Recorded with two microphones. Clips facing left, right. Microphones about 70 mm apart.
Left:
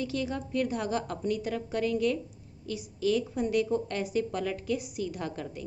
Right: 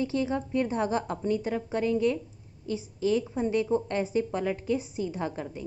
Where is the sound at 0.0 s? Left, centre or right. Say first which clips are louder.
Right 4 dB; right.